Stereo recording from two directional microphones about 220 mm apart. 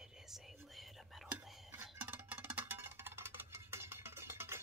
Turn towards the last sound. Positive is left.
turn(degrees=-10)  # may be behind; listen again after turning